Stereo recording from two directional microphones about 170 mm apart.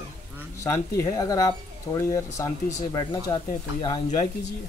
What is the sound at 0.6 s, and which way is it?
Speech, 20° left (ahead or behind).